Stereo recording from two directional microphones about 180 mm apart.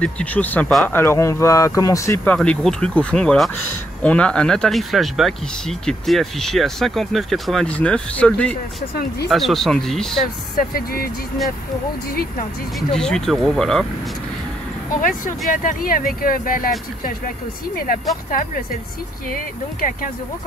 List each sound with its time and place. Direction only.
0.0 s speech: 10° left (ahead or behind)
0.9 s speech: 15° left (ahead or behind)
2.3 s speech: 5° left (ahead or behind)
10.7 s speech: 55° left (ahead or behind)
12.1 s speech: 55° left (ahead or behind)
12.7 s speech: 5° left (ahead or behind)
15.0 s speech: 45° left (ahead or behind)
18.3 s speech: 50° left (ahead or behind)